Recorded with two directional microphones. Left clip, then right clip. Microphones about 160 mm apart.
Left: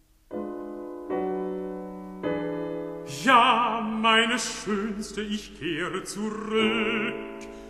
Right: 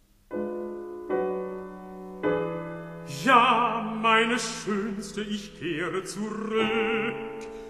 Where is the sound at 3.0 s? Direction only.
50° left (ahead or behind).